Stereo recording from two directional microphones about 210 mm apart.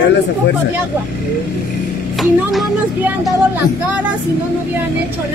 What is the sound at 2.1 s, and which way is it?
Child singing, centre (ahead or behind).